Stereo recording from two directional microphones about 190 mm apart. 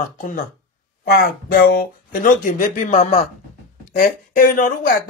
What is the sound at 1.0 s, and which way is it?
Speech, 55° left (ahead or behind).